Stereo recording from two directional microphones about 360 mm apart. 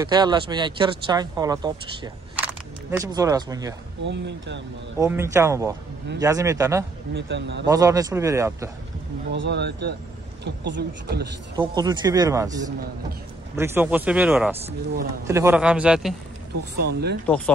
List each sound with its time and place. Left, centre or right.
0.0 s speech: centre
2.3 s single-lens reflex camera: centre
4.0 s speech: right
4.9 s speech: centre
7.2 s speech: right
7.6 s speech: centre
9.3 s speech: right
11.5 s speech: centre
16.7 s speech: right